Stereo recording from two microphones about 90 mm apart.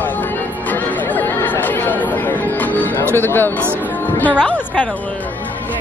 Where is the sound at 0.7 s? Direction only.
20° left (ahead or behind).